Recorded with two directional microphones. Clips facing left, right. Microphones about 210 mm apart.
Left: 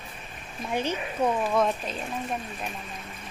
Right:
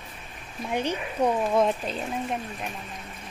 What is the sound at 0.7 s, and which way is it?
Speech, 15° right (ahead or behind).